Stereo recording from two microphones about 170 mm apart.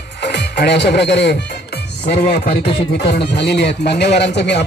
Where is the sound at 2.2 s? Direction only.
65° left (ahead or behind).